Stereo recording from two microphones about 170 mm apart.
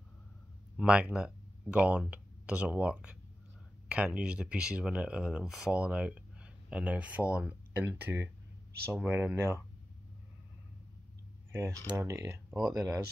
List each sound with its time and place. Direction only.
0.7 s speech: 5° right (ahead or behind)
11.9 s speech: 15° right (ahead or behind)